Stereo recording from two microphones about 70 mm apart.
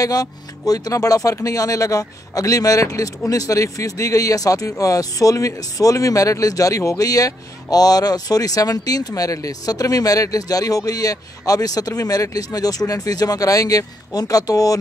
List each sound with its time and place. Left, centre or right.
0.0 s speech: left